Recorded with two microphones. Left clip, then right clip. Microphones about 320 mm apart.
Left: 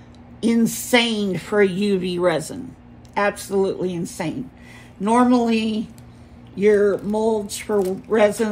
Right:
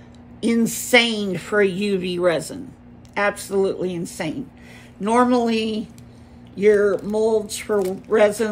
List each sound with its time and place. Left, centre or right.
0.4 s a woman's voice: centre